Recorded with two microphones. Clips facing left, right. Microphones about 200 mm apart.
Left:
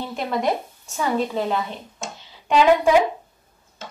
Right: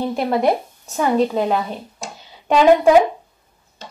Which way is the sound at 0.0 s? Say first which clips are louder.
Right 6 dB; 35° right (ahead or behind).